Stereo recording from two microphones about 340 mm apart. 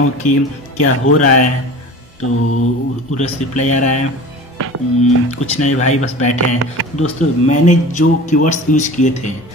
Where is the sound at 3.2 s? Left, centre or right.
Left.